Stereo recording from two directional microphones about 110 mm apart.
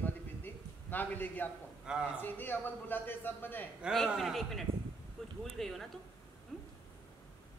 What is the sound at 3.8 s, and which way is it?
Speech, 5° right (ahead or behind).